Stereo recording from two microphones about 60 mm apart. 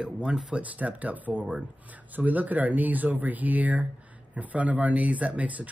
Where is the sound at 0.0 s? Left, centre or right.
Centre.